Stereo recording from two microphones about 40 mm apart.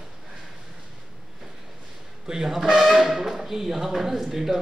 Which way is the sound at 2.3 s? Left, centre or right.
Centre.